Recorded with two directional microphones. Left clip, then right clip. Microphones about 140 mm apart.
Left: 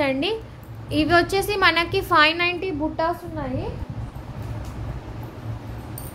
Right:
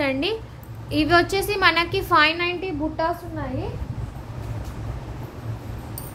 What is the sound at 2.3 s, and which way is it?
Speech, 30° left (ahead or behind).